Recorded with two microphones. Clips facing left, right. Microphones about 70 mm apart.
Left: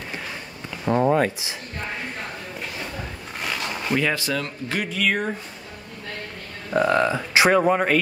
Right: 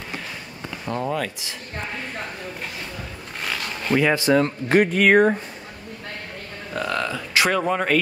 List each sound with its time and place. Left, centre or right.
0.8 s speech: centre
3.9 s speech: right
6.7 s speech: left